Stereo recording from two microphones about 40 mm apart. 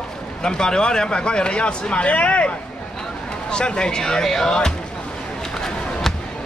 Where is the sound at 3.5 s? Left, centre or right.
Left.